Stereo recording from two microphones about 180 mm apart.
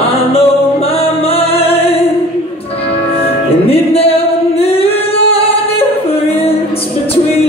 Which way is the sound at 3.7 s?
35° left (ahead or behind).